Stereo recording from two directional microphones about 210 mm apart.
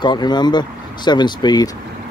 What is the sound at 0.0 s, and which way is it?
Speech, 20° left (ahead or behind).